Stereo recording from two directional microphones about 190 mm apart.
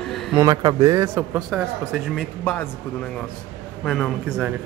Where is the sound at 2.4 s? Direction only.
10° left (ahead or behind).